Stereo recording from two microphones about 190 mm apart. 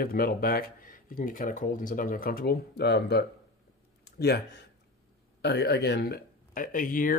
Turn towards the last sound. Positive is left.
turn(degrees=45)  # may be behind; listen again after turning